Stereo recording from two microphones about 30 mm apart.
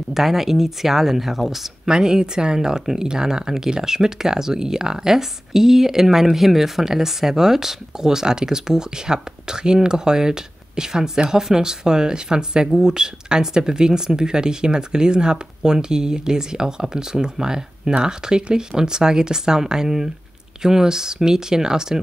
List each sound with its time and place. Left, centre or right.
0.1 s speech: centre
1.9 s speech: right